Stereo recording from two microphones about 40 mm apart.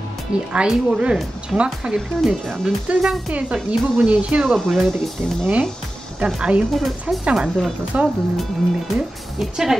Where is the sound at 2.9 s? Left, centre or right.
Right.